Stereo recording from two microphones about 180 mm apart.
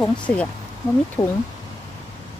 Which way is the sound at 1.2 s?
15° left (ahead or behind).